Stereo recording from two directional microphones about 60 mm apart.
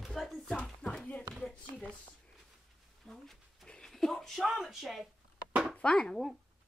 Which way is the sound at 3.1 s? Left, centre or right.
Centre.